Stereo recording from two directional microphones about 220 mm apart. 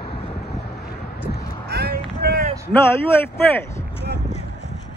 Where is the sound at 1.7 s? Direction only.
45° right (ahead or behind).